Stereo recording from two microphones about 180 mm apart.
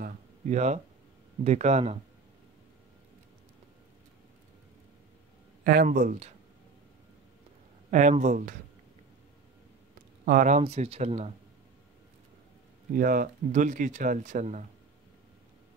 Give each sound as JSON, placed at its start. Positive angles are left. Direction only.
{"t": 0.0, "sound": "a sound", "side_deg": -45}
{"t": 1.4, "sound": "speech", "side_deg": -40}
{"t": 5.6, "sound": "speech", "side_deg": -55}
{"t": 5.9, "sound": "speech", "side_deg": -45}
{"t": 7.9, "sound": "speech", "side_deg": -45}
{"t": 10.2, "sound": "speech", "side_deg": -45}
{"t": 10.6, "sound": "speech", "side_deg": -35}
{"t": 12.9, "sound": "speech", "side_deg": -50}